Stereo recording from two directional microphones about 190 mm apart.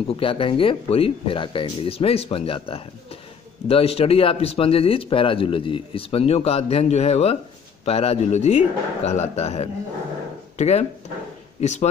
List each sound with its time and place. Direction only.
0.1 s speech: 30° left (ahead or behind)